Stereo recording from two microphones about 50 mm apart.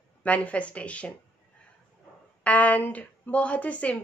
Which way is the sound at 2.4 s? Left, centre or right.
Left.